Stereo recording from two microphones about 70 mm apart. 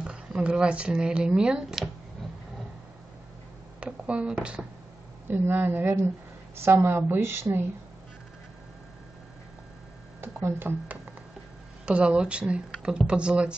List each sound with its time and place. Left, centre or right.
0.0 s speech: centre
3.8 s speech: centre
5.3 s a woman's voice: right
10.2 s speech: right
11.8 s speech: centre